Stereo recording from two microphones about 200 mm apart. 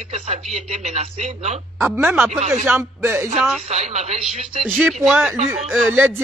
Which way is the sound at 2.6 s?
10° right (ahead or behind).